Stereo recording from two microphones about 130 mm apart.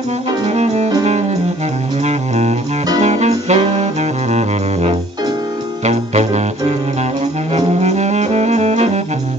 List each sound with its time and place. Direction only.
0.5 s music: 55° right (ahead or behind)
2.0 s music: 60° right (ahead or behind)
7.5 s saxophone: 55° right (ahead or behind)